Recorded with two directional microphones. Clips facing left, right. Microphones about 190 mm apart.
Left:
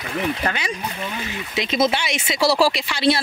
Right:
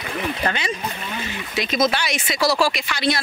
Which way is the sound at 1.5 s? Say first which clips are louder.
Left 1 dB; 25° left (ahead or behind).